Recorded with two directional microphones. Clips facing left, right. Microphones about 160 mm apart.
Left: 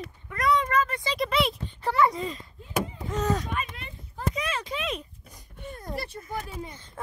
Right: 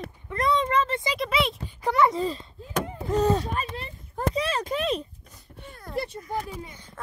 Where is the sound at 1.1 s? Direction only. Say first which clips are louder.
Even; centre (ahead or behind).